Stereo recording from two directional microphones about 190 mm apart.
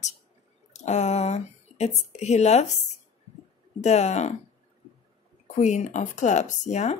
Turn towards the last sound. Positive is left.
turn(degrees=35)  # may be behind; listen again after turning